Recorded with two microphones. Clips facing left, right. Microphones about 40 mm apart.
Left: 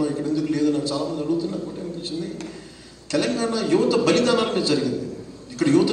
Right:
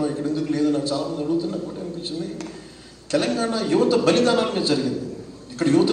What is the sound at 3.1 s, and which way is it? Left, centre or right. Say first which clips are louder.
A man's voice: right 1 dB; right.